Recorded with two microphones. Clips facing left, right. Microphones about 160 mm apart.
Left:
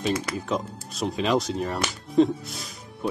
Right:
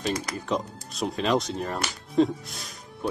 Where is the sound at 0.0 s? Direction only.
40° right (ahead or behind).